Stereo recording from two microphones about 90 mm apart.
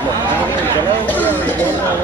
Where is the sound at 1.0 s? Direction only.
20° left (ahead or behind).